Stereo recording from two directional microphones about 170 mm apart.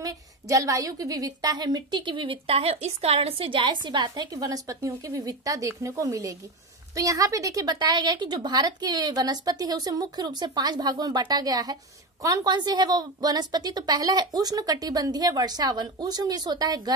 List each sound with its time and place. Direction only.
0.0 s a woman's voice: 20° right (ahead or behind)